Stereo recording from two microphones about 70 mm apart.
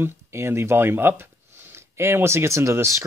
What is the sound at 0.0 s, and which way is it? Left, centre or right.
Speech, right.